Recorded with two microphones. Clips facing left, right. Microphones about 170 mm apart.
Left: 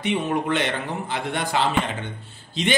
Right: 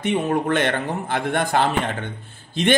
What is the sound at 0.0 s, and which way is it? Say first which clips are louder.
A man's voice: right 3 dB; 50° right (ahead or behind).